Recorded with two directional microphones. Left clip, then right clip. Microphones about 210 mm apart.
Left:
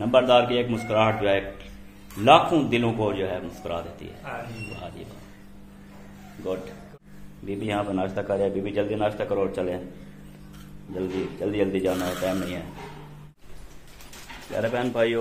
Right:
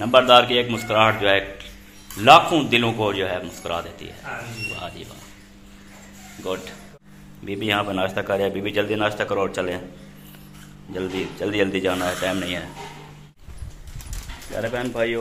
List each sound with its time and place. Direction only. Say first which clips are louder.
0.0 s a man's voice: right 5 dB; centre (ahead or behind)
7.4 s a man's voice: right 5 dB; centre (ahead or behind)
11.0 s a man's voice: right 2 dB; 5° right (ahead or behind)
14.5 s a man's voice: even; 5° right (ahead or behind)